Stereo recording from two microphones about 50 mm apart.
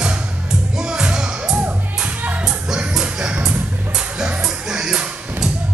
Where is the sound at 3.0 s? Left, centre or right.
Centre.